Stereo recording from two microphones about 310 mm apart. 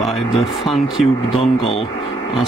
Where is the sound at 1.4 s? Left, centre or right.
Centre.